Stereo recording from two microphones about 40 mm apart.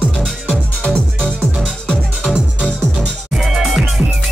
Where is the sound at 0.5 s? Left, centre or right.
Left.